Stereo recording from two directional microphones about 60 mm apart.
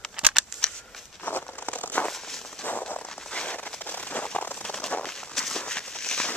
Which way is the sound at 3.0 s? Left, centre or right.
Centre.